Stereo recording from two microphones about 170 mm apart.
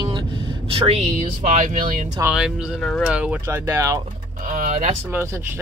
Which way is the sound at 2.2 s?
5° right (ahead or behind).